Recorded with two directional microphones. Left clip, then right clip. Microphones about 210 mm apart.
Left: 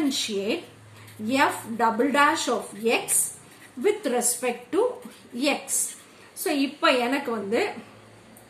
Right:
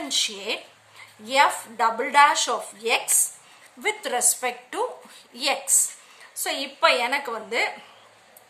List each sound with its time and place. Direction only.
0.1 s a woman's voice: 50° right (ahead or behind)